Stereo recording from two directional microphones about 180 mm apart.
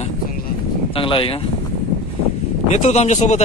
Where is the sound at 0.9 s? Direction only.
30° left (ahead or behind).